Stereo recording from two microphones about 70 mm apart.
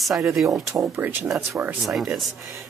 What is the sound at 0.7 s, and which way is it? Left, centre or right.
Speech, right.